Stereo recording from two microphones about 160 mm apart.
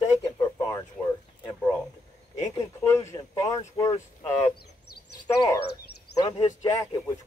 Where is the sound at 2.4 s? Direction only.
15° left (ahead or behind).